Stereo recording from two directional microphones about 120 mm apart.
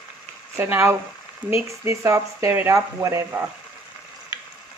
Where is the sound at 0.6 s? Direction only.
15° right (ahead or behind).